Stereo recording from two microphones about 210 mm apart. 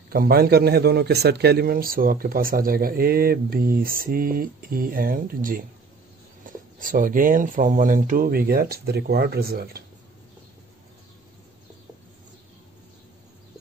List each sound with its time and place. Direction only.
0.1 s a man's voice: 45° right (ahead or behind)